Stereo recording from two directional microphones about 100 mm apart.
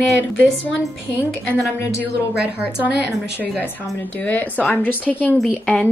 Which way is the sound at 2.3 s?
15° right (ahead or behind).